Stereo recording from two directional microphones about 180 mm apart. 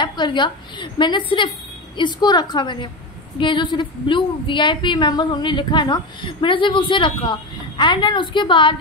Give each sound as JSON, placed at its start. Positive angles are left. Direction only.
{"t": 0.0, "sound": "a woman's voice", "side_deg": 25}